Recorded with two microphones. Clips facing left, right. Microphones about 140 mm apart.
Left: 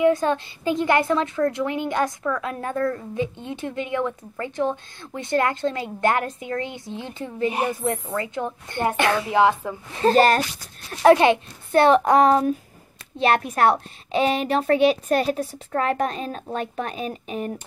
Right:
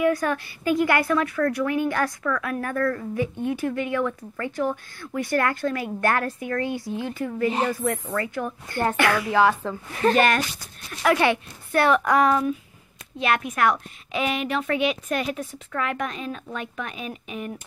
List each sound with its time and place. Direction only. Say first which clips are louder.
0.0 s a woman's voice: left 3 dB; 25° left (ahead or behind)
9.9 s a woman's voice: left 3 dB; 30° left (ahead or behind)